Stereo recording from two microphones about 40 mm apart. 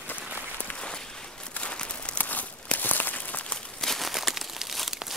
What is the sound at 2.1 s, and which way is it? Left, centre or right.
Crumpling, left.